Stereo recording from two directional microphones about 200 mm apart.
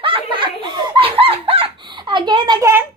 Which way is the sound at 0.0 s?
25° right (ahead or behind).